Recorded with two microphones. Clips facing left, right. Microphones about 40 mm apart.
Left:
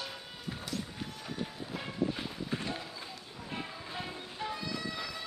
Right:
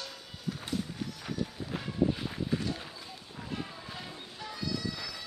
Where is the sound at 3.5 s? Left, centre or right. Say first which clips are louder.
Even; left.